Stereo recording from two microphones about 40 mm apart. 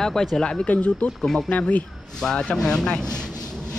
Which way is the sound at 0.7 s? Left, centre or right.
Left.